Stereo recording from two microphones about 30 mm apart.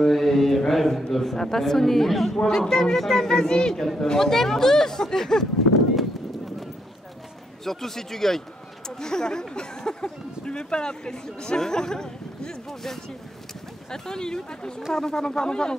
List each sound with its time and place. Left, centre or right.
0.1 s mantra: centre
0.7 s a man's voice: centre
2.3 s speech: left
3.7 s speech: centre
7.6 s speech: centre
8.8 s speech: left